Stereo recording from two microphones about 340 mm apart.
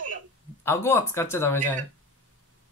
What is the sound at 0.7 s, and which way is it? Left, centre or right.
Speech, centre.